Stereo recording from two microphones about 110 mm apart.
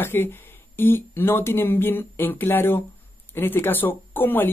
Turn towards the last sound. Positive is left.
turn(degrees=20)  # may be behind; listen again after turning